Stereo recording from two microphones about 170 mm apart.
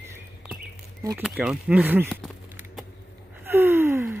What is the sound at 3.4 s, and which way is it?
Gasp, 15° right (ahead or behind).